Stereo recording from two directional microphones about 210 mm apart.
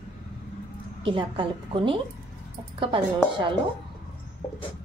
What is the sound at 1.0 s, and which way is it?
Speech, 25° right (ahead or behind).